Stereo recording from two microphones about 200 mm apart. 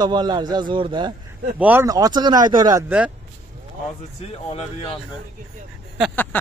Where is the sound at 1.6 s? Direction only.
10° right (ahead or behind).